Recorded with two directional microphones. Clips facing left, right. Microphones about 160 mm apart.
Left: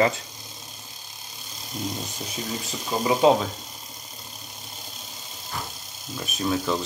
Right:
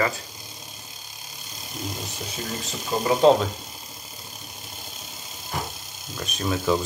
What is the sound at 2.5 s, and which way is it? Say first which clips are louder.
Speech: right 1 dB; centre (ahead or behind).